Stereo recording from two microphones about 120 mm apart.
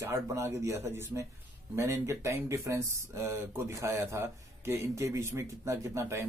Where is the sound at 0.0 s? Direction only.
25° right (ahead or behind).